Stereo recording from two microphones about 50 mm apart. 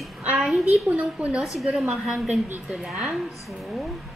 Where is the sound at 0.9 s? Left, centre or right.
Right.